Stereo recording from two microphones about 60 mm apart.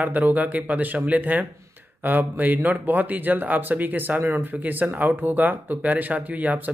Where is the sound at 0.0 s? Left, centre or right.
Right.